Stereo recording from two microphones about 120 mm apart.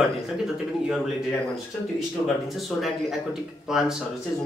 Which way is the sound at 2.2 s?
20° left (ahead or behind).